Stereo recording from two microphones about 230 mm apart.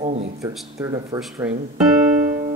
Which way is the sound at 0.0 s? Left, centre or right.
Right.